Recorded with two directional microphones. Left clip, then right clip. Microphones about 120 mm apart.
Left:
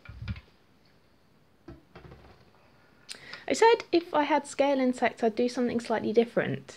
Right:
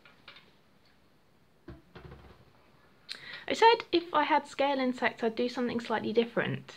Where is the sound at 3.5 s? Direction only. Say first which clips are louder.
Left 1 dB; 40° left (ahead or behind).